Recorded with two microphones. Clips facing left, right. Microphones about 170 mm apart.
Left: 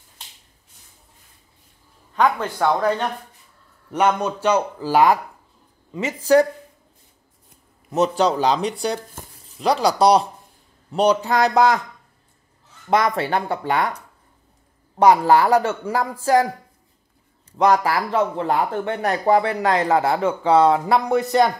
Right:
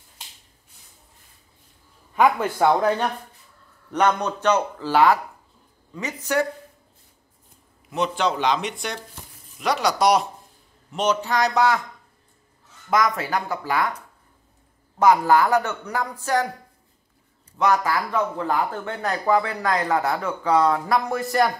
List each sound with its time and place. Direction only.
2.2 s speech: 10° right (ahead or behind)
3.9 s speech: 10° left (ahead or behind)
5.9 s speech: 25° left (ahead or behind)
7.9 s speech: 40° left (ahead or behind)
12.9 s speech: 30° left (ahead or behind)
15.0 s speech: 30° left (ahead or behind)
17.6 s speech: 30° left (ahead or behind)